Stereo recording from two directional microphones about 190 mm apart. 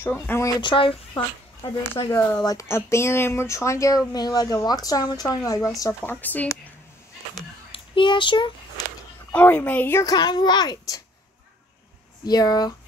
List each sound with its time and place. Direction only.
0.0 s speech: 10° left (ahead or behind)
0.6 s speech: 25° left (ahead or behind)
2.0 s speech: 15° left (ahead or behind)
7.7 s speech: 25° left (ahead or behind)
9.3 s speech: 5° left (ahead or behind)
12.3 s speech: 20° left (ahead or behind)